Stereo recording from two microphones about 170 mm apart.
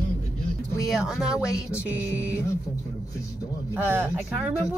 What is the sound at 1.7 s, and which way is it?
Music, 15° left (ahead or behind).